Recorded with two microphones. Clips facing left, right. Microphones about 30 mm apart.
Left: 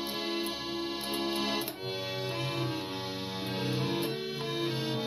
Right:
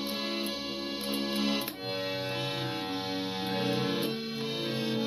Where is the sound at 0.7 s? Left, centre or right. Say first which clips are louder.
Left 1 dB; right.